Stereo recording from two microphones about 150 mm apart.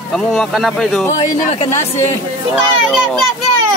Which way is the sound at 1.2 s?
50° left (ahead or behind).